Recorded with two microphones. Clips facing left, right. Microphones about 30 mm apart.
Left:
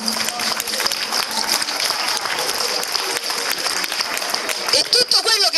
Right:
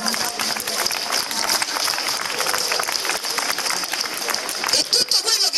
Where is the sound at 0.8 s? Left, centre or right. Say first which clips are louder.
Left 2 dB; left.